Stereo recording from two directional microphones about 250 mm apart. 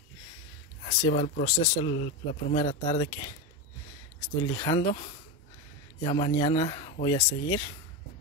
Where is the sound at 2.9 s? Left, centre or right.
Centre.